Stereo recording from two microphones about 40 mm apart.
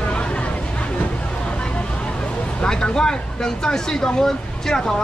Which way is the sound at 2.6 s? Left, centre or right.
Centre.